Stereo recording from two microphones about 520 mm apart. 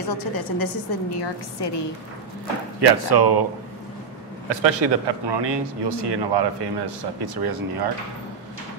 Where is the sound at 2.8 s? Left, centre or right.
Right.